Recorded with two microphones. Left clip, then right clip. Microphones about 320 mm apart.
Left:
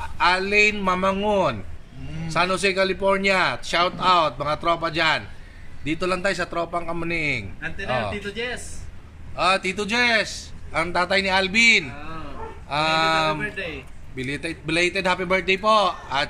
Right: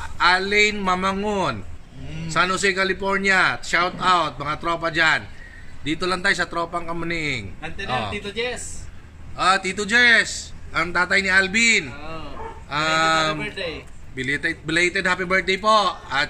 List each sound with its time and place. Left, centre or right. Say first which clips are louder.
0.0 s a man's voice: right 2 dB; centre
8.1 s a man's voice: right 2 dB; centre
9.4 s a man's voice: right 1 dB; centre